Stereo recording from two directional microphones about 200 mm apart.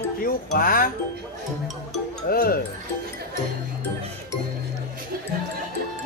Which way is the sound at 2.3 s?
45° left (ahead or behind).